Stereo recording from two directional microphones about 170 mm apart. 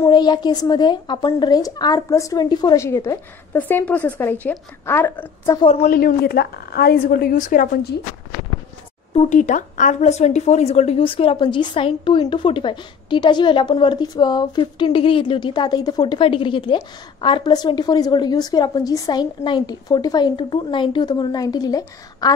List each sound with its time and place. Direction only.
0.0 s speech: 25° left (ahead or behind)
5.6 s a woman's voice: 35° left (ahead or behind)
5.9 s a woman's voice: 60° left (ahead or behind)
9.1 s speech: 40° left (ahead or behind); by 22.3 s 20° left (ahead or behind)